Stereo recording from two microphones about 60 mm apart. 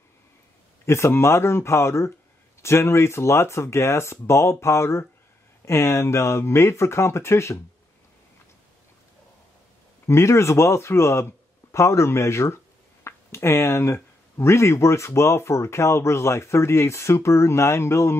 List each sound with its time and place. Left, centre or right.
0.8 s speech: left
10.0 s speech: left